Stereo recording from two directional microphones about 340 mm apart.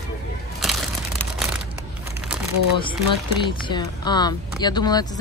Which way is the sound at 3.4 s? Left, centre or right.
Centre.